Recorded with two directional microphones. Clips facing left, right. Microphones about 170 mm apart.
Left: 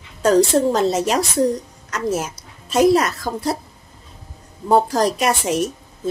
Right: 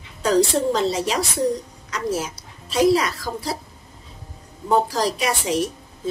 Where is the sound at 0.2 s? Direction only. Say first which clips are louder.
Left 4 dB; 50° left (ahead or behind).